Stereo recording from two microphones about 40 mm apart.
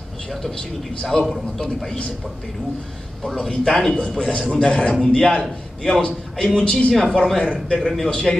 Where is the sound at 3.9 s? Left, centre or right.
Left.